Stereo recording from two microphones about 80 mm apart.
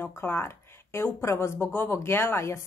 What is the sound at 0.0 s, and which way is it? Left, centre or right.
Speech, left.